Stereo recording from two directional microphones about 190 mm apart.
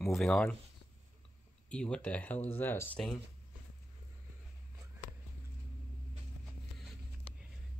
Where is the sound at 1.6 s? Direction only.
5° left (ahead or behind).